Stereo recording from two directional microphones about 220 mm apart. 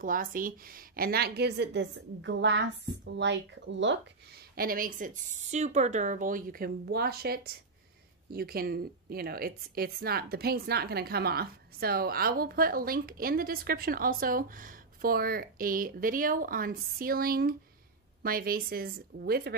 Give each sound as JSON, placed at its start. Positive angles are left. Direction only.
{"t": 0.0, "sound": "a woman's voice", "side_deg": -40}
{"t": 4.6, "sound": "a woman's voice", "side_deg": -40}